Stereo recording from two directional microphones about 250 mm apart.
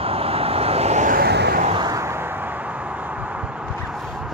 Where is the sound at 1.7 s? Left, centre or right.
Centre.